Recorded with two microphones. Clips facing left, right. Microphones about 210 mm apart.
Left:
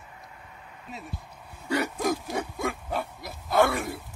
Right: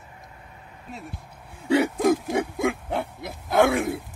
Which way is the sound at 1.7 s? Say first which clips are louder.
Right 7 dB; 25° right (ahead or behind).